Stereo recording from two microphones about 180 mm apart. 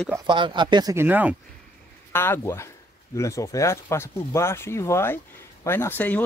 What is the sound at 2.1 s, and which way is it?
Speech, 10° left (ahead or behind).